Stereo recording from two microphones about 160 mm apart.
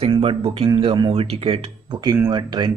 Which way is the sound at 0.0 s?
35° right (ahead or behind).